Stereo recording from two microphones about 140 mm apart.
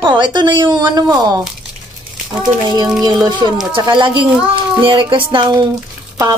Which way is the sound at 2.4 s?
30° right (ahead or behind).